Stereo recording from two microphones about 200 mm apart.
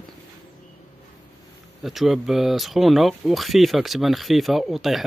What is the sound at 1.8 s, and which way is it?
Speech, centre (ahead or behind).